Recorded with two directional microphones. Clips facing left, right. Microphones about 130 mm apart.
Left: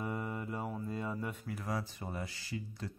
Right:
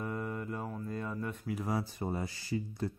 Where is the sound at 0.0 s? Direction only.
10° left (ahead or behind).